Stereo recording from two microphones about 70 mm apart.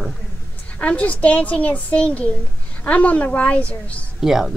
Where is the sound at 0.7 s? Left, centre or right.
Centre.